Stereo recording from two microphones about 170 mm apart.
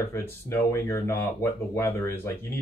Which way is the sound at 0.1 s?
15° left (ahead or behind).